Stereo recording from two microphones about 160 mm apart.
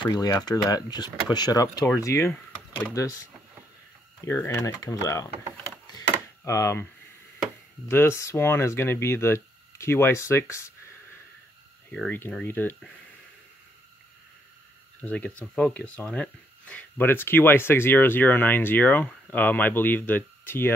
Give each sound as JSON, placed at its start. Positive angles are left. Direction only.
{"t": 0.0, "sound": "speech", "side_deg": 25}
{"t": 4.2, "sound": "speech", "side_deg": 15}
{"t": 5.9, "sound": "a sound", "side_deg": 20}
{"t": 7.9, "sound": "speech", "side_deg": 15}
{"t": 11.9, "sound": "speech", "side_deg": 10}
{"t": 15.0, "sound": "speech", "side_deg": 10}